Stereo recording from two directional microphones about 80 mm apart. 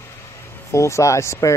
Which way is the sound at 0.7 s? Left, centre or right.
Left.